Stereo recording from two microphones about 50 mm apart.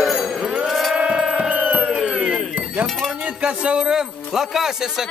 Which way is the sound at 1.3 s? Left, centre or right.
Right.